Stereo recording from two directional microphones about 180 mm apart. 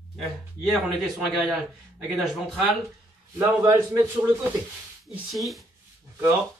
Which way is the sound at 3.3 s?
15° right (ahead or behind).